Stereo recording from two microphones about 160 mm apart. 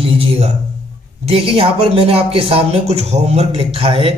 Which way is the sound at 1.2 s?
35° right (ahead or behind).